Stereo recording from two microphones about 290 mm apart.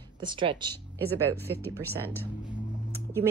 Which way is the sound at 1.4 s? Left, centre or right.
Centre.